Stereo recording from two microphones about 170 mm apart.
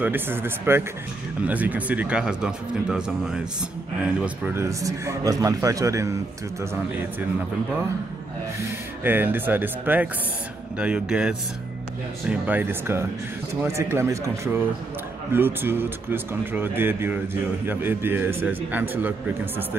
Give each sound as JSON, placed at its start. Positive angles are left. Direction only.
{"t": 0.0, "sound": "speech", "side_deg": -10}
{"t": 9.0, "sound": "speech", "side_deg": -10}